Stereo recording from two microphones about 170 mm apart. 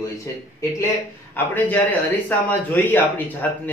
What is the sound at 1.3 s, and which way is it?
Speech, 10° left (ahead or behind).